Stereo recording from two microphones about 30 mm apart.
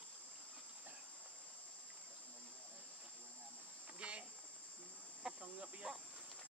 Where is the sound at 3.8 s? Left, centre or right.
Right.